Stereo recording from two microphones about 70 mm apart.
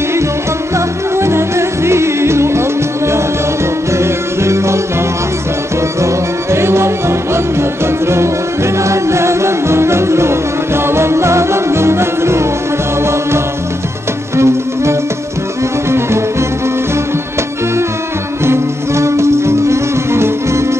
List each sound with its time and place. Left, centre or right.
0.7 s music: right
4.0 s music: right
5.9 s music: right
14.3 s music: right
18.4 s music: right